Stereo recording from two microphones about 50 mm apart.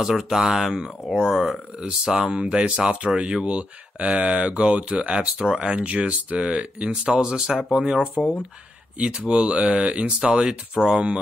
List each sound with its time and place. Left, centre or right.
0.0 s speech: centre
1.8 s speech: centre
5.7 s speech: right; by 11.0 s centre